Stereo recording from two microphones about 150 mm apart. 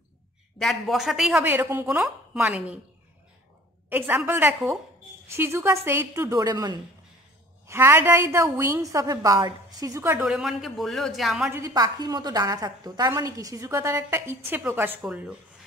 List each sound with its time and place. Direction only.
0.6 s a man's voice: centre (ahead or behind)
1.4 s a woman's voice: 15° right (ahead or behind)
2.0 s a woman's voice: 5° right (ahead or behind)
3.9 s a woman's voice: 15° right (ahead or behind)
10.1 s a man's voice: 5° right (ahead or behind)
11.5 s a woman's voice: 25° right (ahead or behind); by 15.3 s 10° right (ahead or behind)